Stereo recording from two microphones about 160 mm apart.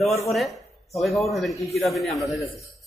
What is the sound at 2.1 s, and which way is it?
Speech, 20° left (ahead or behind).